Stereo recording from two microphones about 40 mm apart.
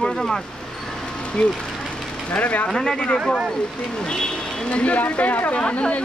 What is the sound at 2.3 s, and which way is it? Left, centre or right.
Speech, left.